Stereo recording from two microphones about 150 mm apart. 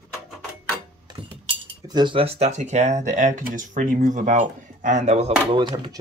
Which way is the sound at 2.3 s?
50° right (ahead or behind).